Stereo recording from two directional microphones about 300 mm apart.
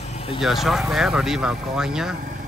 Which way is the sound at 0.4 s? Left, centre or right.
Centre.